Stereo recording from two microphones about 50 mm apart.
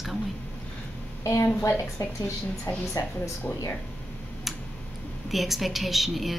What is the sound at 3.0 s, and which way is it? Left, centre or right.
Speech, left.